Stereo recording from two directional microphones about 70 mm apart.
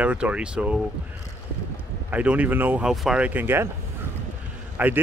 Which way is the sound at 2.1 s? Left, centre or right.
Right.